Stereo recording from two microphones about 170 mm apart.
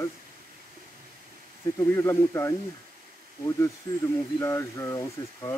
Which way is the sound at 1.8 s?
15° left (ahead or behind).